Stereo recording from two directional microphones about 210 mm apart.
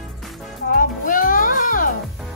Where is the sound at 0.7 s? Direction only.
40° left (ahead or behind).